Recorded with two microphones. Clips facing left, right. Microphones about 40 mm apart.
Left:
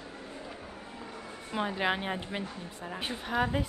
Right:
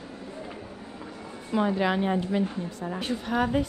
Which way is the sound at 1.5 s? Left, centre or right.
Centre.